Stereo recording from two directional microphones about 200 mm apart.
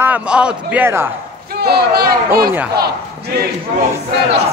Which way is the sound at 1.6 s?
50° right (ahead or behind).